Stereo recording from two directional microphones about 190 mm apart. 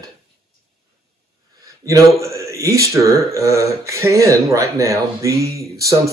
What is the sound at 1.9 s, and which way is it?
Speech, 15° right (ahead or behind).